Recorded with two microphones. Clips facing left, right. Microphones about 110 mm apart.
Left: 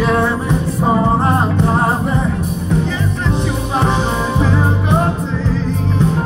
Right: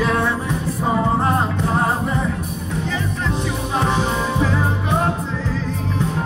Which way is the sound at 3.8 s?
25° left (ahead or behind).